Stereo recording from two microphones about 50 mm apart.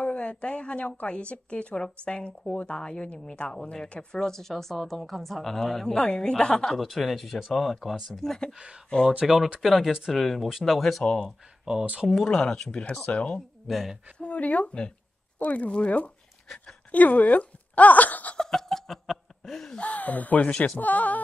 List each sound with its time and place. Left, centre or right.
0.0 s speech: left; by 5.9 s centre
5.9 s a woman's voice: centre
6.8 s speech: centre
9.2 s speech: centre
11.1 s a woman's voice: centre
11.7 s speech: centre
12.1 s a woman's voice: centre; by 13.4 s left
13.7 s speech: centre
14.1 s speech: left
18.4 s laughter: centre
19.8 s speech: left